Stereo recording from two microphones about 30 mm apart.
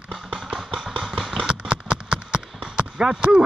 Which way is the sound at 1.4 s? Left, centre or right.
Right.